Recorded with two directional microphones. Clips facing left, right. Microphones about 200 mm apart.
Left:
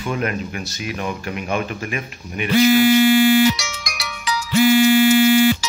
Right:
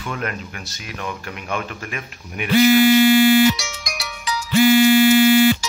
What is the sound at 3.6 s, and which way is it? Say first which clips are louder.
Music: even; 75° left (ahead or behind).